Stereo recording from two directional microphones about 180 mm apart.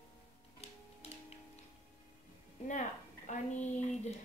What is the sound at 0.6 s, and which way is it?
Music, 35° left (ahead or behind).